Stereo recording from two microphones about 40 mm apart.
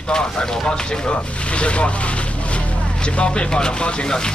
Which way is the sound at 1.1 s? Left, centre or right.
Left.